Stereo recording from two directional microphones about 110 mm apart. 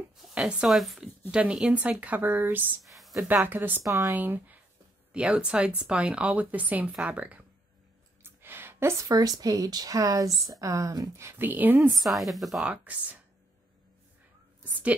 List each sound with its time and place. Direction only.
0.2 s speech: 5° right (ahead or behind)
2.8 s a sound: centre (ahead or behind)
3.4 s speech: 15° right (ahead or behind)
3.8 s speech: 30° right (ahead or behind)
4.1 s speech: 15° right (ahead or behind)
8.2 s a sound: 20° right (ahead or behind)
9.0 s speech: 35° right (ahead or behind); by 11.9 s 15° right (ahead or behind)
11.9 s speech: centre (ahead or behind)
12.6 s speech: 15° right (ahead or behind)
14.6 s a sound: 15° right (ahead or behind)